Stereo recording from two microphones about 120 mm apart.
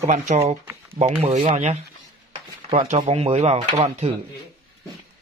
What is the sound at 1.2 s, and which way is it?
Speech, 65° right (ahead or behind).